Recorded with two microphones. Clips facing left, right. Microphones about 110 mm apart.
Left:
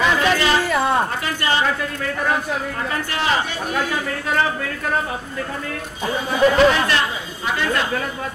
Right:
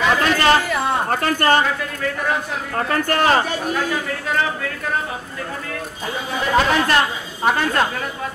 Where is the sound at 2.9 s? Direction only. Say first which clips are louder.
Right 6 dB; 50° right (ahead or behind).